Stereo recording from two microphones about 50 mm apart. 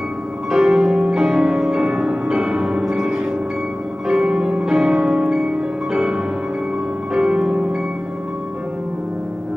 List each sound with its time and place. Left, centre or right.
0.5 s music: centre